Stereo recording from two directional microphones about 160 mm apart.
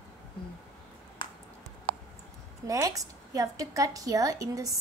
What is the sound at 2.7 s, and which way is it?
A woman's voice, 20° right (ahead or behind).